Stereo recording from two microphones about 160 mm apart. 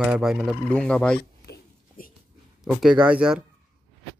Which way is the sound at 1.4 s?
75° left (ahead or behind).